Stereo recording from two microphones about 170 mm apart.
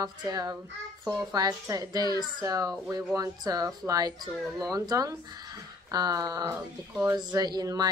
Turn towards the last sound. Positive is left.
turn(degrees=-20)  # may be behind; listen again after turning